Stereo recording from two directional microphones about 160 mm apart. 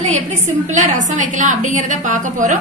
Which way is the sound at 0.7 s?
50° right (ahead or behind).